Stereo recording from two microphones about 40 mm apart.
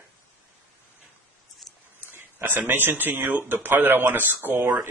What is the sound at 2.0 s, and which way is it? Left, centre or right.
Speech, right.